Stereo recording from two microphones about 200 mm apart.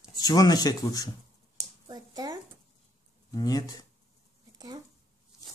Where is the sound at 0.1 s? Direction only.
15° left (ahead or behind).